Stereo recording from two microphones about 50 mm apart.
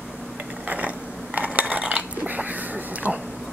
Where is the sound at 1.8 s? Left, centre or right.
Centre.